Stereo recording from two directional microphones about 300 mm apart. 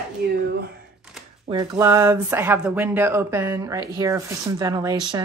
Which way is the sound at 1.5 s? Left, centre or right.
Centre.